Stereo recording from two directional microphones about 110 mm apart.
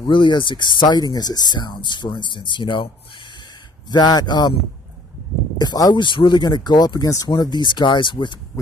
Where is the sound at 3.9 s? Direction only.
40° left (ahead or behind).